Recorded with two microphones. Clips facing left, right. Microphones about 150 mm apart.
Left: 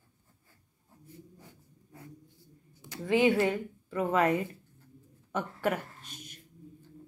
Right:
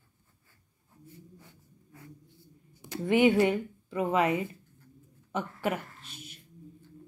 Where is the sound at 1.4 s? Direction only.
30° left (ahead or behind).